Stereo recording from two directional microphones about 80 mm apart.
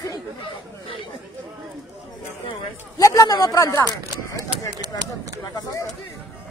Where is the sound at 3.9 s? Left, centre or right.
Right.